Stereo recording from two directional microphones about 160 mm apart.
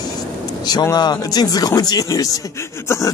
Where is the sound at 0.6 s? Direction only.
25° left (ahead or behind).